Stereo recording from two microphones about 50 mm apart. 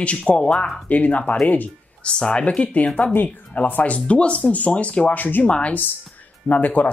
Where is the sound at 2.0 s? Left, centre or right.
Centre.